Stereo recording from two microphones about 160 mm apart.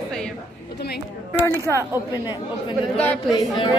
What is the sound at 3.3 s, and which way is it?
Speech, 30° left (ahead or behind).